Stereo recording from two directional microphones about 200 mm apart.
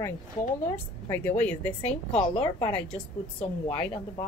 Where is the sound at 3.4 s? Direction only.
25° left (ahead or behind).